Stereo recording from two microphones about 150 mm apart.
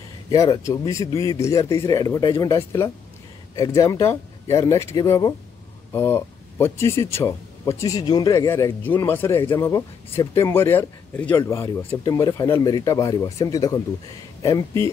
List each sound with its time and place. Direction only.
0.3 s speech: 20° left (ahead or behind)